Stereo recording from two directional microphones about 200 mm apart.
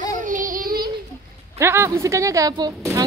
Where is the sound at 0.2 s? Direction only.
40° right (ahead or behind).